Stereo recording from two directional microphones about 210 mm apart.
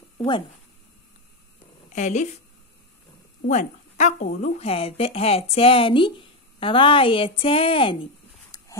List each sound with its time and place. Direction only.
1.9 s speech: 35° left (ahead or behind)
3.4 s speech: 35° left (ahead or behind)